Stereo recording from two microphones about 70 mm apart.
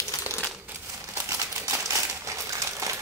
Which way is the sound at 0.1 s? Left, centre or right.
Left.